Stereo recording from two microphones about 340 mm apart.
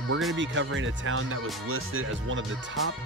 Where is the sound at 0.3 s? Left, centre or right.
Right.